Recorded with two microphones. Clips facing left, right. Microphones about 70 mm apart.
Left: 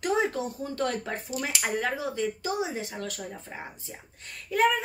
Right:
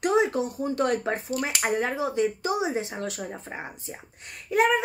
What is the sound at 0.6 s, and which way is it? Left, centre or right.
Speech, right.